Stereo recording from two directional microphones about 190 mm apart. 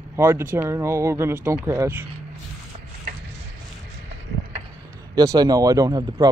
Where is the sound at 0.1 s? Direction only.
10° right (ahead or behind).